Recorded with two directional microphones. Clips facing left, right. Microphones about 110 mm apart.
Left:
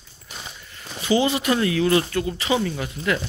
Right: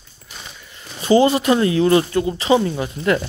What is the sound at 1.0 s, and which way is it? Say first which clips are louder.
Speech: right 6 dB; 40° right (ahead or behind).